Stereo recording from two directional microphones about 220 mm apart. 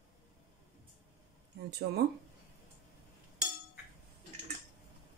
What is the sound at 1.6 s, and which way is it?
Speech, 50° right (ahead or behind).